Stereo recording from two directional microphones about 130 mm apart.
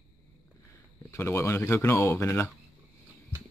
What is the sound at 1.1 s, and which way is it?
Speech, 20° left (ahead or behind).